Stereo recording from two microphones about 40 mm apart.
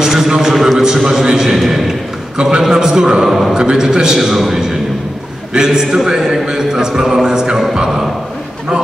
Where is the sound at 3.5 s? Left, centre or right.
Centre.